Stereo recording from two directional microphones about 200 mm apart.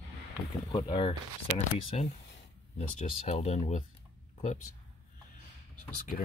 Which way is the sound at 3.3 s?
30° left (ahead or behind).